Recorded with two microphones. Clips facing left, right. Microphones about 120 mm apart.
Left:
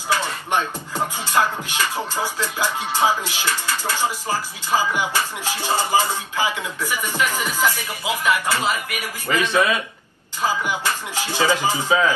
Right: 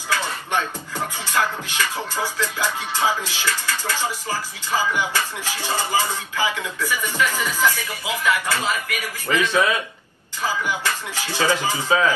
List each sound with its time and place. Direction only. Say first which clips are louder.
0.1 s music: left 2 dB; 15° left (ahead or behind)